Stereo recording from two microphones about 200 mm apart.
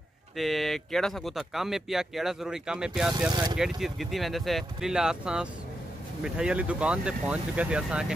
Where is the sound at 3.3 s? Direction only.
20° right (ahead or behind).